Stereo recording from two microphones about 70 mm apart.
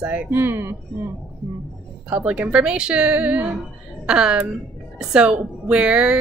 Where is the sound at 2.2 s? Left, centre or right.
Centre.